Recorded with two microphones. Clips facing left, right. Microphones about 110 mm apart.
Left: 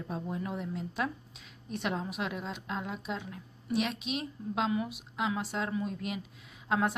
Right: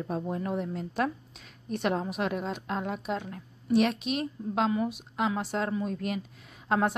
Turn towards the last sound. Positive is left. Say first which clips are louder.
# right 3 dB
turn(degrees=-40)  # may be behind; listen again after turning